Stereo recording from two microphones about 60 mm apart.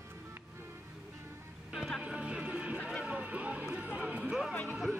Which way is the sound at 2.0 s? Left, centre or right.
Centre.